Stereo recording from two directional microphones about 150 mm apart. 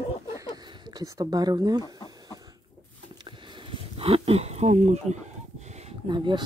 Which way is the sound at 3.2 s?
40° right (ahead or behind).